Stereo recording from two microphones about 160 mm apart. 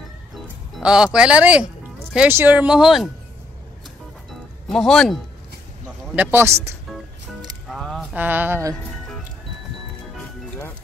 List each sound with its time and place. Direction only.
0.7 s speech: 5° right (ahead or behind)
4.3 s music: centre (ahead or behind)
6.1 s speech: 15° right (ahead or behind)
7.7 s a sound: centre (ahead or behind)
8.1 s speech: 10° right (ahead or behind)